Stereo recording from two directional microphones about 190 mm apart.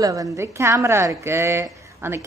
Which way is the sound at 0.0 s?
15° right (ahead or behind).